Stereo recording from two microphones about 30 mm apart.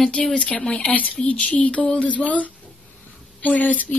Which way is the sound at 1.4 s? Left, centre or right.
Left.